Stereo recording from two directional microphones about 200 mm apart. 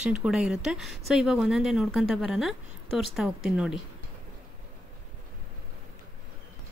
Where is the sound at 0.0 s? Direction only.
5° right (ahead or behind).